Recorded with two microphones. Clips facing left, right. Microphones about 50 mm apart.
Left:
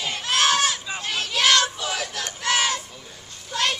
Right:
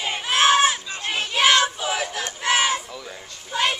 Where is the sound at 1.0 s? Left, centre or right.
Right.